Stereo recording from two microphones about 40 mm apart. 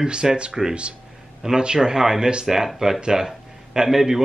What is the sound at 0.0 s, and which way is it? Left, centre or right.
A man's voice, right.